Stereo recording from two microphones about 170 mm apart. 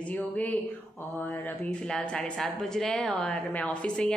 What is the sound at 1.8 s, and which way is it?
A woman's voice, 5° left (ahead or behind).